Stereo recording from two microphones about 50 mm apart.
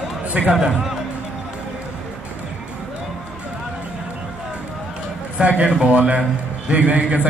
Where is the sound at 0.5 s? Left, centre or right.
Centre.